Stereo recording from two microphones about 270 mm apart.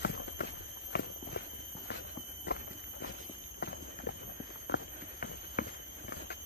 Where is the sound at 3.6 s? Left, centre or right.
Left.